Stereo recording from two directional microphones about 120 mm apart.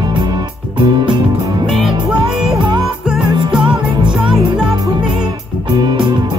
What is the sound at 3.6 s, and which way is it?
Music, 45° right (ahead or behind).